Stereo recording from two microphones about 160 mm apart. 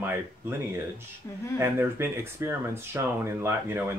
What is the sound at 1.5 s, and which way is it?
Speech, 15° right (ahead or behind).